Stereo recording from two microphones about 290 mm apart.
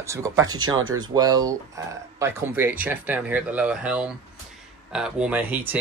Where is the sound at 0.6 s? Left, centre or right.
Right.